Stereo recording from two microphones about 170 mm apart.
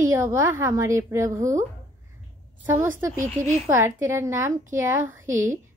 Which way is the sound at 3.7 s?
15° right (ahead or behind).